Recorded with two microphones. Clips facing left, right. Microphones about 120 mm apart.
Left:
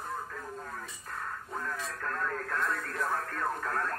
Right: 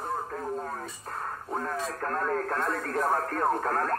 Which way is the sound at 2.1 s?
40° right (ahead or behind).